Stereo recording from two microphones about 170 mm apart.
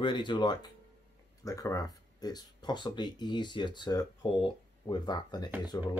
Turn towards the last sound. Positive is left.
turn(degrees=20)  # may be behind; listen again after turning